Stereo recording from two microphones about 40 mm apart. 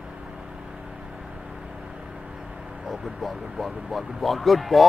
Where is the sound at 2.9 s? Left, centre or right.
Centre.